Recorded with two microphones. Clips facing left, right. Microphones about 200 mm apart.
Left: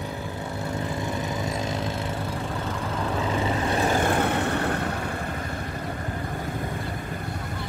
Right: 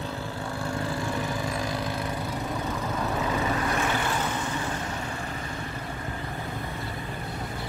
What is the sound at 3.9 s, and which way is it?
Vehicle, 50° left (ahead or behind).